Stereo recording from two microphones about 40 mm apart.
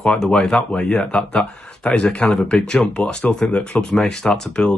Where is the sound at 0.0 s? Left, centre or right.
Centre.